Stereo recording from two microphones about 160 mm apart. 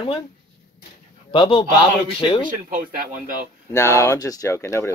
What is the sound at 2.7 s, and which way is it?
Speech, 60° right (ahead or behind).